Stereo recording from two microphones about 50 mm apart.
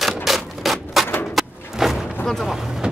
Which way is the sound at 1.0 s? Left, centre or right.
Left.